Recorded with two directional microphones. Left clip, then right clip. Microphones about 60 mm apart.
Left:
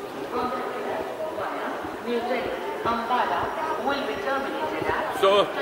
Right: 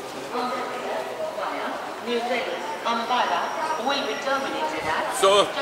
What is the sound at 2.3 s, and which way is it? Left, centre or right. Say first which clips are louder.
A man's voice: right 1 dB; centre.